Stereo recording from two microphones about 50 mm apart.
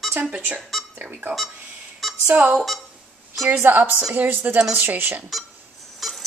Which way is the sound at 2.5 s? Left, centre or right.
Centre.